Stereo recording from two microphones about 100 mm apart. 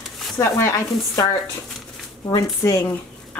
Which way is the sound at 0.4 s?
30° left (ahead or behind).